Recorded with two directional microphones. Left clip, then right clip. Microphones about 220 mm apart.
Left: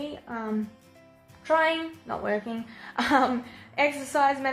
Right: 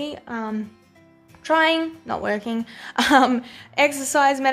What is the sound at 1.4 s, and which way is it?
A woman's voice, 45° right (ahead or behind).